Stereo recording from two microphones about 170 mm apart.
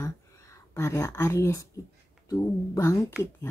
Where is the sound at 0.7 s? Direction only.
15° left (ahead or behind).